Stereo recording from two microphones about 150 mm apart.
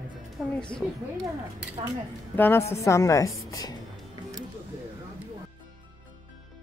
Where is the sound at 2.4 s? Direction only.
15° left (ahead or behind).